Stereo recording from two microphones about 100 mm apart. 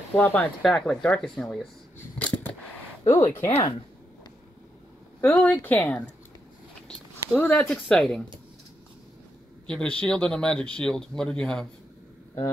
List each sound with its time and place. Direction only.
0.1 s speech: 15° left (ahead or behind)
2.1 s a sound: 15° left (ahead or behind)
3.1 s speech: 25° left (ahead or behind)
5.4 s speech: 15° left (ahead or behind)
7.3 s speech: 15° left (ahead or behind)
9.7 s speech: 10° left (ahead or behind)